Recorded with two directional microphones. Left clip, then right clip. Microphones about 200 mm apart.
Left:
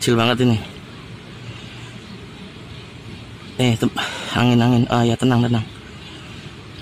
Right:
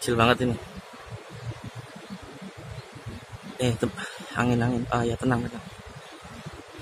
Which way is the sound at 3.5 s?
35° left (ahead or behind).